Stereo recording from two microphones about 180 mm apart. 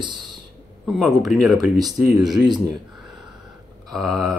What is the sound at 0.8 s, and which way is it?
Speech, centre (ahead or behind).